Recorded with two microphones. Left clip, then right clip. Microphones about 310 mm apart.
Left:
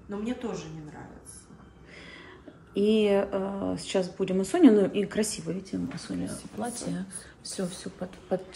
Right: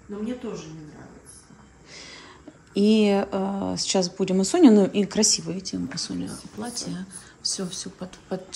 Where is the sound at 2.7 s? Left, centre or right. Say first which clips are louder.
Right 3 dB; centre.